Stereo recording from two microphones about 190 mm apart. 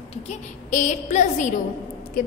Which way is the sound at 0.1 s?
40° left (ahead or behind).